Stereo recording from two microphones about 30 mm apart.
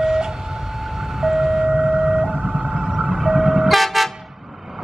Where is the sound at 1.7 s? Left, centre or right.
Right.